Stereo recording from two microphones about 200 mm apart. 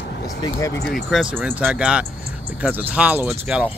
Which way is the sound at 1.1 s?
5° right (ahead or behind).